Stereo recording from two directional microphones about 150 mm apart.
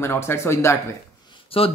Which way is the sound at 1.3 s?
40° left (ahead or behind).